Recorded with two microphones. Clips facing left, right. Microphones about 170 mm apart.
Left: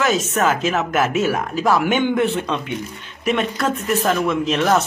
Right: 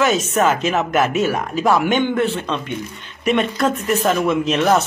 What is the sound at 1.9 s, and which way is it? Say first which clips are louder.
A man's voice: even; 15° left (ahead or behind).